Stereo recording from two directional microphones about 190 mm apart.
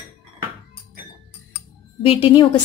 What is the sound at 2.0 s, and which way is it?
Speech, 30° left (ahead or behind).